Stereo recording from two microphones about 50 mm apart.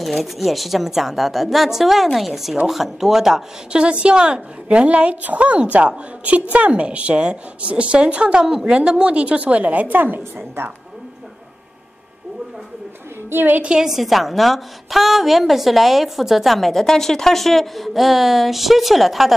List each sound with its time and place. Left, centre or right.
0.0 s a woman's voice: centre
3.7 s a woman's voice: right
13.3 s a woman's voice: right
13.7 s a woman's voice: centre